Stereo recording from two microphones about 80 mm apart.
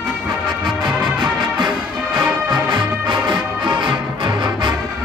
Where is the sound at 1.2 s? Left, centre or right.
Right.